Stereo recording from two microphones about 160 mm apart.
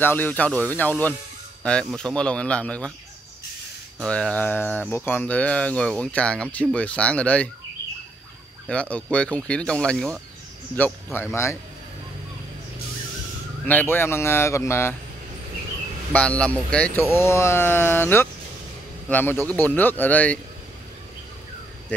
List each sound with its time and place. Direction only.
0.0 s speech: 10° left (ahead or behind)
4.0 s speech: 5° left (ahead or behind)
8.6 s speech: 5° left (ahead or behind)
10.8 s speech: 15° left (ahead or behind)
13.7 s speech: 10° left (ahead or behind)
16.1 s speech: 10° left (ahead or behind)